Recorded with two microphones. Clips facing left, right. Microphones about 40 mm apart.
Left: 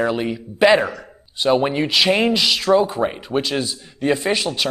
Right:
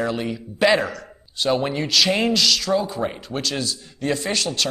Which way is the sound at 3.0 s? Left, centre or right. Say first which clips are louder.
Left 5 dB; centre.